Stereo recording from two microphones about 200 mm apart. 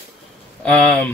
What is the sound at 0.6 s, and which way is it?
Speech, 5° left (ahead or behind).